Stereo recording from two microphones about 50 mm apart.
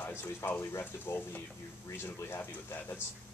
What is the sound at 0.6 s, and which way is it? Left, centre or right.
Speech, left.